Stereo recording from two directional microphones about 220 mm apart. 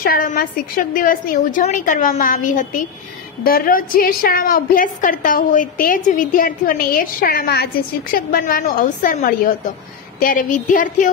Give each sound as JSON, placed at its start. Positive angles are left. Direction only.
{"t": 0.0, "sound": "a woman's voice", "side_deg": 40}